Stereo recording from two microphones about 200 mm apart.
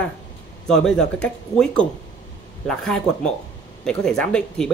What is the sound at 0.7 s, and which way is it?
Speech, 5° left (ahead or behind).